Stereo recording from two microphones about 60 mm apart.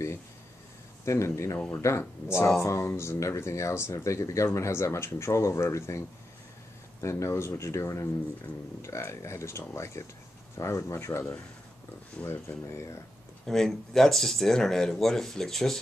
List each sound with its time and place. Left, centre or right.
1.0 s speech: left
13.5 s speech: centre